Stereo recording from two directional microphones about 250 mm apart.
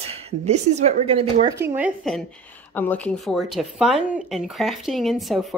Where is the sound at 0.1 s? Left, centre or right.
Right.